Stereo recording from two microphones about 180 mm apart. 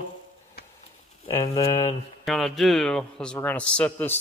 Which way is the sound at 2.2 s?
Centre (ahead or behind).